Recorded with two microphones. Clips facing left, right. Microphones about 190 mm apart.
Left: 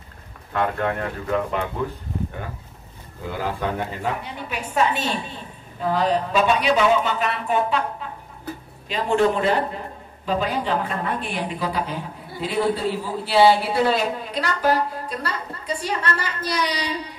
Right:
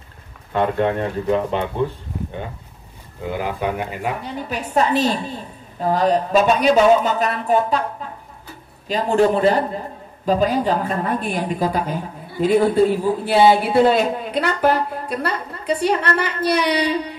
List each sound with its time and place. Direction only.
0.5 s speech: 25° right (ahead or behind)
3.3 s speech: 20° right (ahead or behind)
4.2 s a woman's voice: 40° right (ahead or behind)
8.8 s a woman's voice: 40° right (ahead or behind); by 17.0 s 60° right (ahead or behind)